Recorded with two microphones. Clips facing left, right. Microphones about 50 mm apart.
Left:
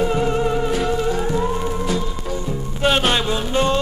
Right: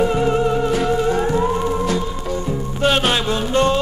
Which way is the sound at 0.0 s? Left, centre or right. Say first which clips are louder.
Right 2 dB; centre.